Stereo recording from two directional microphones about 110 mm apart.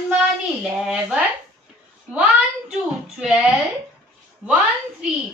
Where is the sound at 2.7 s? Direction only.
10° right (ahead or behind).